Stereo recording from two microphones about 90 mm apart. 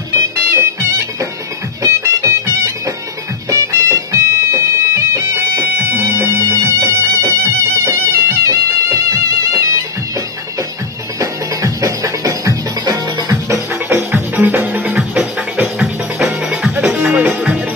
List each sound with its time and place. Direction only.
0.1 s music: 35° right (ahead or behind)
7.8 s bagpipes: 30° right (ahead or behind)
11.1 s music: 40° right (ahead or behind)
13.8 s music: 20° right (ahead or behind)